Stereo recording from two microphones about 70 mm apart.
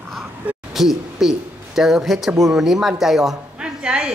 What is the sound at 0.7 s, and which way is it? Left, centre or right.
A woman's voice, centre.